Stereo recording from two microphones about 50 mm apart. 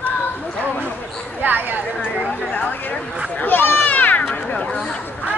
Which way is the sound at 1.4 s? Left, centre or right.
Right.